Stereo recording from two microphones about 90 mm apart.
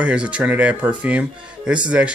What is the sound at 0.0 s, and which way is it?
Speech, 15° right (ahead or behind).